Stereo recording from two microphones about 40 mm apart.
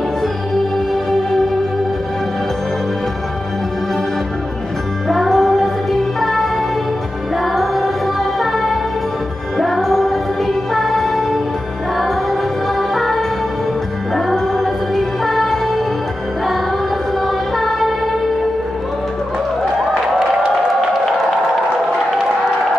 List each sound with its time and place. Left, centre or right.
5.0 s music: centre
17.6 s music: centre